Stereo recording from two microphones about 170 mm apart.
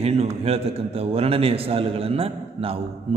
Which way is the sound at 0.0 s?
35° right (ahead or behind).